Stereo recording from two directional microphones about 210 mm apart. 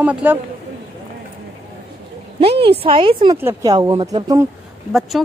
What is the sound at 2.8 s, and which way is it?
Speech, 25° right (ahead or behind).